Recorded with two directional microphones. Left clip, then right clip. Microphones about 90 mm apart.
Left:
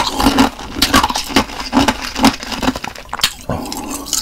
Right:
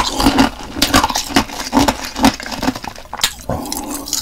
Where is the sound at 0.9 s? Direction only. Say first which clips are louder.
Even; 10° right (ahead or behind).